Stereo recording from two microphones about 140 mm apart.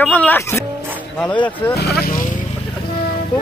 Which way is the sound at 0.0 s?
10° left (ahead or behind).